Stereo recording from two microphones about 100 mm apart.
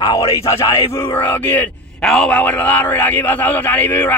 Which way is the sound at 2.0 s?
5° left (ahead or behind).